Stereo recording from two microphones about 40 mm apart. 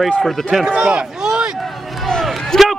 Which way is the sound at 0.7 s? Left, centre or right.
Centre.